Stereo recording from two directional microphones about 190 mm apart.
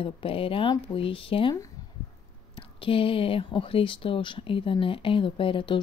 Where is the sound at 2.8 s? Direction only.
30° left (ahead or behind).